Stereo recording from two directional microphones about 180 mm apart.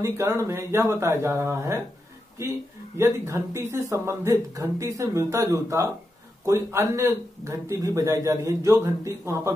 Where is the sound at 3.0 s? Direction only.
15° right (ahead or behind).